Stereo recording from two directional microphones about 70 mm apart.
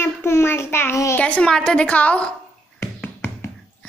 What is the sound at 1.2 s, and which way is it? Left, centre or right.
A woman's voice, centre.